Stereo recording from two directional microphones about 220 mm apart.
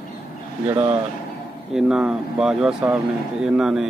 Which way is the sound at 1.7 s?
5° right (ahead or behind).